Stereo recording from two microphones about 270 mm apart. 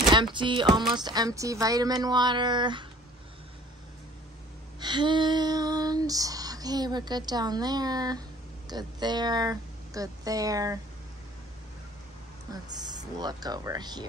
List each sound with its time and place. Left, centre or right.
0.1 s female singing: centre
4.7 s female singing: centre
8.6 s speech: centre
12.7 s female singing: centre